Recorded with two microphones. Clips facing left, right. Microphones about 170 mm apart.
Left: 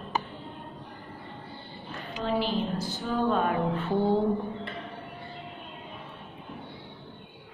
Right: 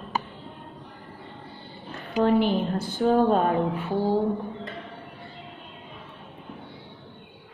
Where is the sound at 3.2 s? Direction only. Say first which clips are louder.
Right 5 dB; 35° right (ahead or behind).